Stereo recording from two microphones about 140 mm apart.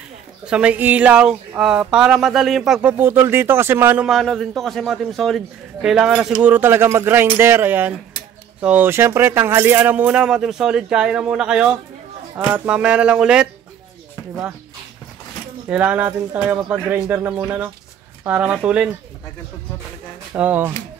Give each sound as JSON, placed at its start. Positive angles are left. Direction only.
{"t": 0.5, "sound": "a man's voice", "side_deg": -10}
{"t": 4.1, "sound": "a man's voice", "side_deg": 0}
{"t": 15.7, "sound": "speech", "side_deg": -10}
{"t": 20.3, "sound": "speech", "side_deg": -10}